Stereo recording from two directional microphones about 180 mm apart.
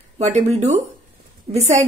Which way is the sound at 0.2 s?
35° right (ahead or behind).